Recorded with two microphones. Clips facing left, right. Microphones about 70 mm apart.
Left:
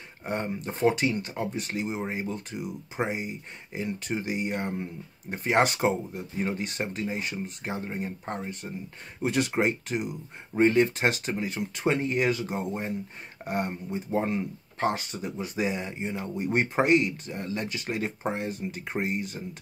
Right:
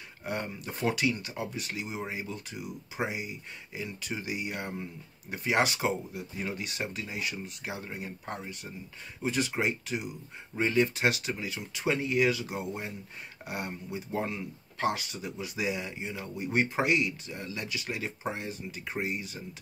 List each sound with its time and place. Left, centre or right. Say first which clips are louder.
0.2 s speech: left 4 dB; left
9.2 s speech: left 4 dB; left